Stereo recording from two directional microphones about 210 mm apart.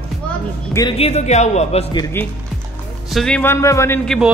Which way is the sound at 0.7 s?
25° left (ahead or behind).